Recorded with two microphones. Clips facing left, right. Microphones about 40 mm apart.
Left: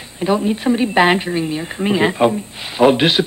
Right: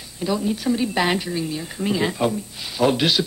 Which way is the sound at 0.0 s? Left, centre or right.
Left.